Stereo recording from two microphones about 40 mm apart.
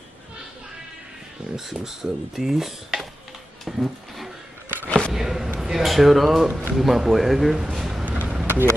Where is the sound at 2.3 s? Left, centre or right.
Centre.